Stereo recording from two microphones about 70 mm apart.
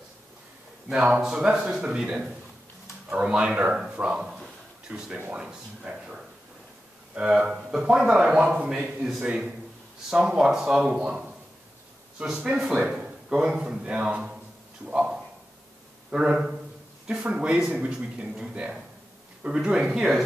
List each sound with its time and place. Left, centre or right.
0.8 s a man's voice: centre